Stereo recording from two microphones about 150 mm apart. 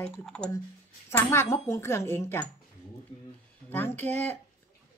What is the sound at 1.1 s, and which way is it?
A woman's voice, 15° left (ahead or behind).